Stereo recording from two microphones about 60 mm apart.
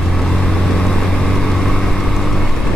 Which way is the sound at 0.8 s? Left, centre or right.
Centre.